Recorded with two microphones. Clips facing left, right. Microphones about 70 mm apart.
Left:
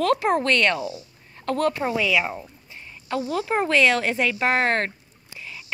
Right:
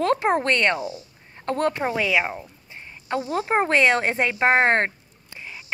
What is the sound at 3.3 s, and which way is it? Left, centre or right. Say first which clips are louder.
Speech: right 1 dB; right.